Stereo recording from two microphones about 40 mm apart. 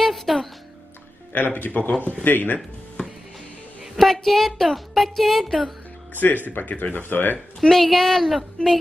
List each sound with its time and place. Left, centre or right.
0.0 s music: centre
1.3 s speech: left
2.2 s speech: left
4.0 s speech: centre
6.1 s speech: left
7.6 s speech: centre